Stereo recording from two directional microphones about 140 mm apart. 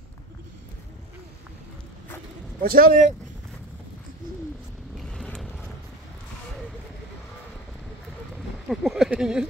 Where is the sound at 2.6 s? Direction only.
90° right; by 3.2 s 75° right (ahead or behind).